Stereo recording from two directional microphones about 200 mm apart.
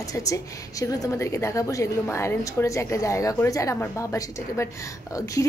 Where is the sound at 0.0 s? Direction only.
15° left (ahead or behind).